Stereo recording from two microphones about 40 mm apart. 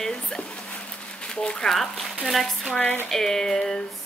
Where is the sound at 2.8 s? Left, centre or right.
Left.